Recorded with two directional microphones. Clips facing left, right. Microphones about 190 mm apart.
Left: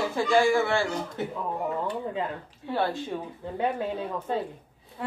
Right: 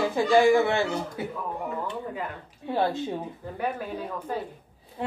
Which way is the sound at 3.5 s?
25° left (ahead or behind).